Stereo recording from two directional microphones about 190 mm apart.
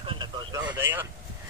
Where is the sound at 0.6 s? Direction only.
10° right (ahead or behind).